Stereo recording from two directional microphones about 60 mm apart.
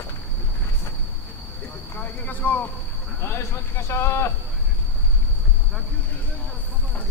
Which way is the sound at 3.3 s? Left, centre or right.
Left.